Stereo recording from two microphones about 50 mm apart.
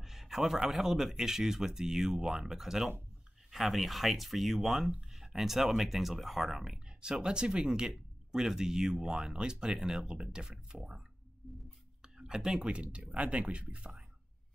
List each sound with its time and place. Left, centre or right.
0.0 s speech: centre; by 13.9 s right